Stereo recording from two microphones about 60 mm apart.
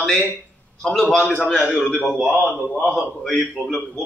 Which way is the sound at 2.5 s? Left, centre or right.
Left.